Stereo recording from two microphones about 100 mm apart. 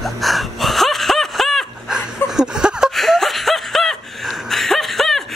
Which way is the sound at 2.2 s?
5° right (ahead or behind).